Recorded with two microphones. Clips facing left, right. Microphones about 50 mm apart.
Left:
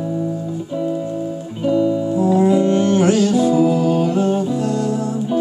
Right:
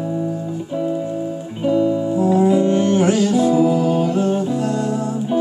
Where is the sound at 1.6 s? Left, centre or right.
Centre.